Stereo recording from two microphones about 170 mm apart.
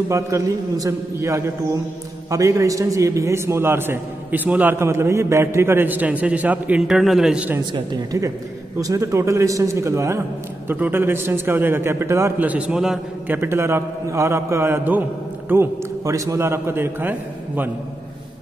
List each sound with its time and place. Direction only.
0.1 s a man's voice: 20° right (ahead or behind)
7.7 s a woman's voice: 25° right (ahead or behind)